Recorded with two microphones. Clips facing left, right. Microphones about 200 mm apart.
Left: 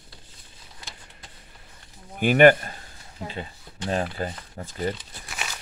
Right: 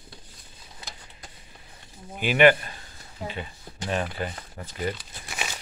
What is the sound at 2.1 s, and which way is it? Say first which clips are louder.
Speech: left 3 dB; 50° left (ahead or behind).